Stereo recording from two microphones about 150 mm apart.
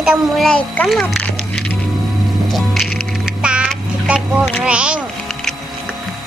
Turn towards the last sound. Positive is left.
turn(degrees=-5)  # may be behind; listen again after turning